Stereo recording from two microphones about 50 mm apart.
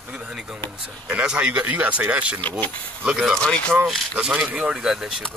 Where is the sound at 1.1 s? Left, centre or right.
Right.